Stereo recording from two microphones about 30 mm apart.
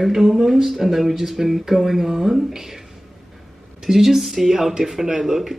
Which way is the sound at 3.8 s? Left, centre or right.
Centre.